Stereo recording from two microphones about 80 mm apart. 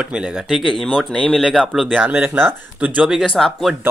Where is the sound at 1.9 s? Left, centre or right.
Centre.